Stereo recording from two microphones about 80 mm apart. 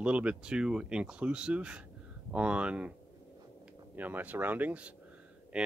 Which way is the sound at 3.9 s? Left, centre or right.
Right.